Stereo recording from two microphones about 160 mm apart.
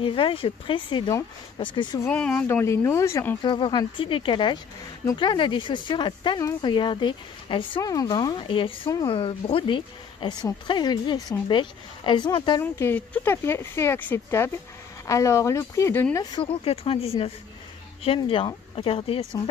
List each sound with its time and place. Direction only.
0.0 s speech: 35° left (ahead or behind)
2.0 s speech: 10° left (ahead or behind)
3.4 s speech: 30° left (ahead or behind)
12.7 s speech: 10° left (ahead or behind)
16.2 s speech: 30° left (ahead or behind)